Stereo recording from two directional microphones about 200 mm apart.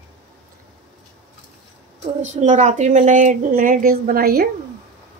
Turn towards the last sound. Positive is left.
turn(degrees=-50)  # may be behind; listen again after turning